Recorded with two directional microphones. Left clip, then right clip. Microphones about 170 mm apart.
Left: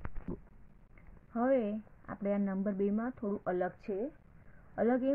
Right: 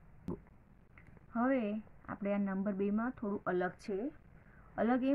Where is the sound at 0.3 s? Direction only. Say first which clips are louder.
Right 1 dB; 10° right (ahead or behind).